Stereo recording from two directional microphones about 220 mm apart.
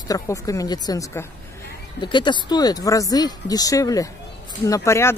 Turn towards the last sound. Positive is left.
turn(degrees=10)  # may be behind; listen again after turning